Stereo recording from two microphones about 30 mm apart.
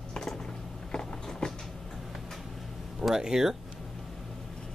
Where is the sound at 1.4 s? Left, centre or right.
Left.